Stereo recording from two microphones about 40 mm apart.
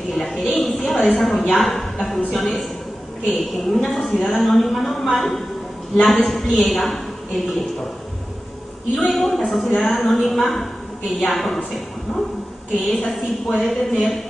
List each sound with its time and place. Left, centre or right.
0.1 s a woman's voice: centre
8.9 s a woman's voice: centre